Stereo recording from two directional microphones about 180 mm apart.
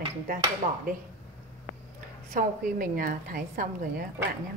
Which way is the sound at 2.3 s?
50° right (ahead or behind).